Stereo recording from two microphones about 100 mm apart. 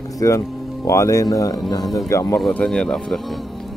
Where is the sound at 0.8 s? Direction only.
30° left (ahead or behind).